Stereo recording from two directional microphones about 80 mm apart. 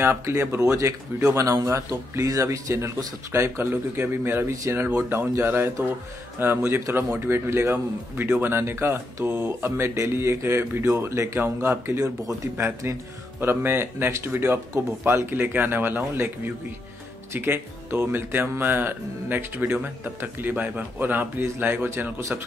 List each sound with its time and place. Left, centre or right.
0.0 s speech: right